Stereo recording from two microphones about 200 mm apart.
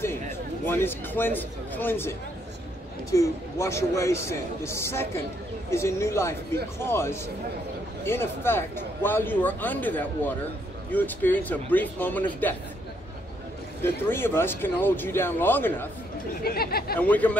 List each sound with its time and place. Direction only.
0.7 s speech: 10° left (ahead or behind)
13.8 s speech: 10° left (ahead or behind)
16.4 s speech: 50° left (ahead or behind)
17.0 s speech: 5° left (ahead or behind)